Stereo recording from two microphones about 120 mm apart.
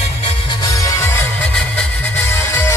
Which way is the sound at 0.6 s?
25° left (ahead or behind).